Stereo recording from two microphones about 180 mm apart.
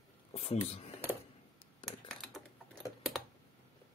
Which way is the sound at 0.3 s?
35° left (ahead or behind).